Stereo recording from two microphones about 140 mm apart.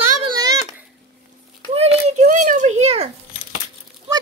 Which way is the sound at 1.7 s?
50° right (ahead or behind).